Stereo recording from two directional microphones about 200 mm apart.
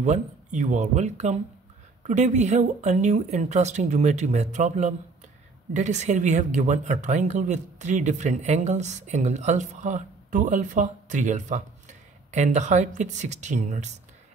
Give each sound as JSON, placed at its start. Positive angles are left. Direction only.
{"t": 0.0, "sound": "speech", "side_deg": -35}